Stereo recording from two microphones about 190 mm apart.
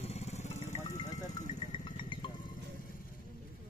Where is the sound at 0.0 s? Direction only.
35° left (ahead or behind).